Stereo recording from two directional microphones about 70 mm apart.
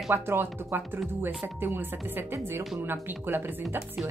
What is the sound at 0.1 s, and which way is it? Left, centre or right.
Speech, right.